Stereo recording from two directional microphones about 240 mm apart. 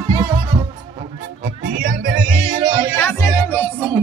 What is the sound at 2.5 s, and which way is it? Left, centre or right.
Music, right.